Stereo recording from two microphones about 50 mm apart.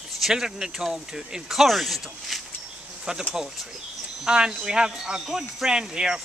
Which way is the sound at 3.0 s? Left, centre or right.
Centre.